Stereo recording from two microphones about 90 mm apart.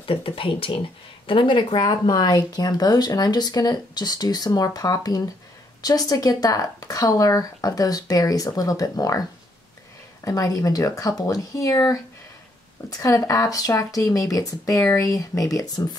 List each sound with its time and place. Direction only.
0.0 s speech: 85° left
1.2 s speech: 70° left (ahead or behind)
1.9 s speech: 45° left (ahead or behind)
10.2 s speech: 40° left (ahead or behind)
13.0 s speech: 40° left (ahead or behind)